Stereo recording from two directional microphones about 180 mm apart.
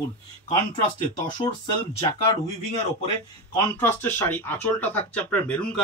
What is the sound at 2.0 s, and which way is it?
Speech, 40° left (ahead or behind).